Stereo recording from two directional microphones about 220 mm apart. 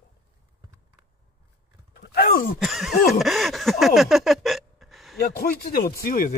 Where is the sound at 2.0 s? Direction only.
40° left (ahead or behind).